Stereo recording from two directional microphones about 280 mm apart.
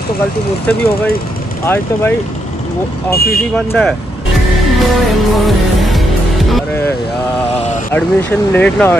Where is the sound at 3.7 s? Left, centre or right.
Centre.